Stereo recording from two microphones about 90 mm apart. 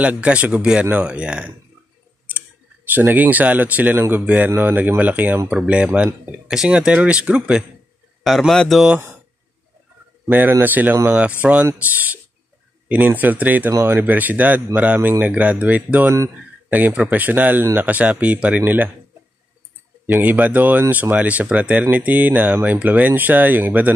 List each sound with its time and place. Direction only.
0.0 s speech: 15° right (ahead or behind)
8.2 s a man's voice: centre (ahead or behind)
10.2 s speech: 25° right (ahead or behind)
20.1 s speech: 20° right (ahead or behind)